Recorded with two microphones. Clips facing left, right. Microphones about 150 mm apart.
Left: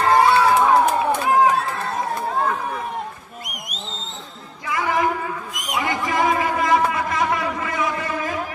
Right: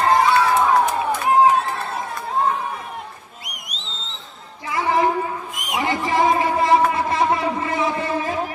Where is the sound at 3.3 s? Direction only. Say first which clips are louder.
Left 4 dB; 45° left (ahead or behind).